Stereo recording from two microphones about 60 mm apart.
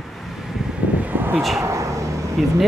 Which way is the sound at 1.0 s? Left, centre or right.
Right.